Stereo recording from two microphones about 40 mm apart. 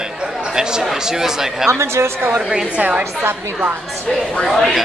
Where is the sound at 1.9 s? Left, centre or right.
Right.